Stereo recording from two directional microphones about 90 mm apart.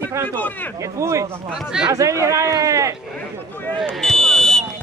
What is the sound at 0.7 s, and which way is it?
Speech, 35° right (ahead or behind).